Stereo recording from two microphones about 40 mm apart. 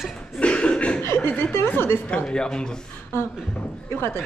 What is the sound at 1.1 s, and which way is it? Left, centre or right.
A woman's voice, left.